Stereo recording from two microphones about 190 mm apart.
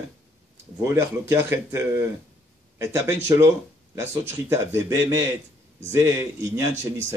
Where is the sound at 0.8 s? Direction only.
15° right (ahead or behind).